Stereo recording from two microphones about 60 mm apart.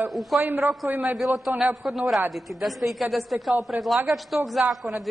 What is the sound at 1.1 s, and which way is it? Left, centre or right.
A woman's voice, centre.